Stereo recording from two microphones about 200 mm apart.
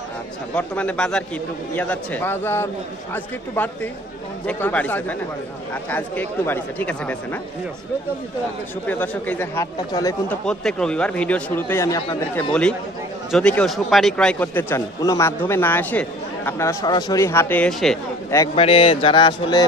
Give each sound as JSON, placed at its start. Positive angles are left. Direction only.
{"t": 0.6, "sound": "a man's voice", "side_deg": 5}
{"t": 8.8, "sound": "a man's voice", "side_deg": 10}
{"t": 10.4, "sound": "a man's voice", "side_deg": 5}
{"t": 18.5, "sound": "speech", "side_deg": 30}